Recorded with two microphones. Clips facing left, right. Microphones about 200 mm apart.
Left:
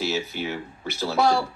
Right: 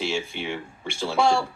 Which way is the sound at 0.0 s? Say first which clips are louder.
Left 1 dB; 5° left (ahead or behind).